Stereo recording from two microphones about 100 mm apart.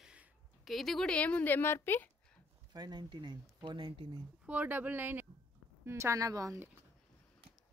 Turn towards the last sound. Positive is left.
turn(degrees=-35)  # may be behind; listen again after turning